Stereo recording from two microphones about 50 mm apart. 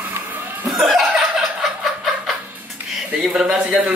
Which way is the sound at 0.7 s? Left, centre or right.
Centre.